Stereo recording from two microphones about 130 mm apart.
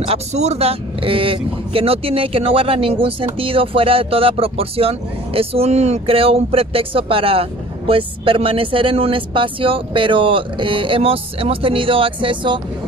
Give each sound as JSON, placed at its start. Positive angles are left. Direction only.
{"t": 0.0, "sound": "speech", "side_deg": -55}